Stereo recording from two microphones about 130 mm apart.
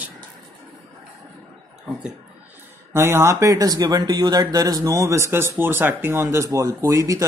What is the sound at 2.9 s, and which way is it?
Speech, 20° right (ahead or behind).